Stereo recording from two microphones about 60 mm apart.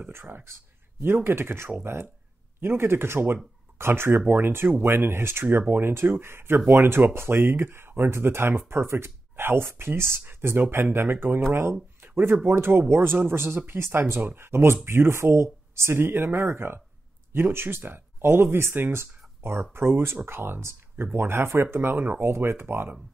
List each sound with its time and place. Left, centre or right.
0.1 s speech: right
12.4 s speech: right
22.2 s speech: right